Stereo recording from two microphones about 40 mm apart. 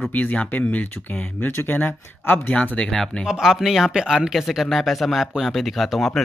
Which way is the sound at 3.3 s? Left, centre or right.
Centre.